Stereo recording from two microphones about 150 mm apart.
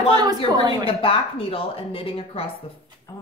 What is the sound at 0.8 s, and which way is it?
A woman's voice, 40° left (ahead or behind).